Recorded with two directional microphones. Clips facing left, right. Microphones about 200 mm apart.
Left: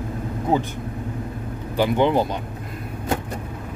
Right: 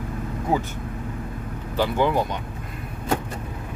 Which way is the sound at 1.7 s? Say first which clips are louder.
Left 3 dB; 15° left (ahead or behind).